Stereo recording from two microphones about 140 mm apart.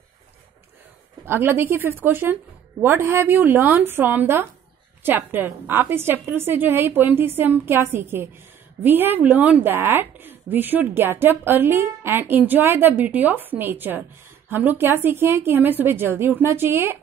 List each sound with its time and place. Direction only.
1.2 s a woman's voice: 15° right (ahead or behind)